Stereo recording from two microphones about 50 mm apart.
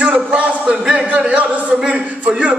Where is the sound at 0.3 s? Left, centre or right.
Right.